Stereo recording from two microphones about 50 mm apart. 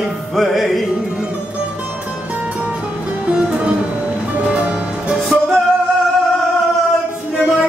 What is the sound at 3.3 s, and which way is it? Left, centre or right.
Music, centre.